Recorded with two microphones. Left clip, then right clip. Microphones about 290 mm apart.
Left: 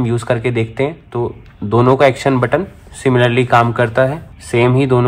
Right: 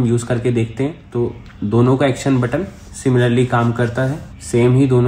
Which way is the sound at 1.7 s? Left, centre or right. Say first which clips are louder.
Left 5 dB; left.